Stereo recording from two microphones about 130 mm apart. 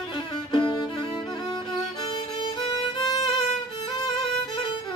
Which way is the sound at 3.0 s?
35° left (ahead or behind).